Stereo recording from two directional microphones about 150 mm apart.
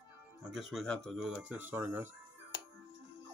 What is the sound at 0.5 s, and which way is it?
Speech, centre (ahead or behind).